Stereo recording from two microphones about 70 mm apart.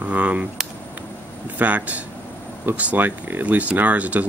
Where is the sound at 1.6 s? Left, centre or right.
Right.